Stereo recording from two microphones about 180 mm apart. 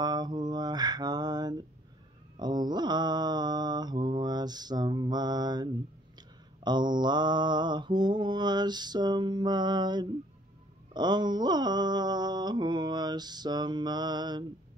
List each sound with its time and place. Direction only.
0.0 s mantra: 25° right (ahead or behind)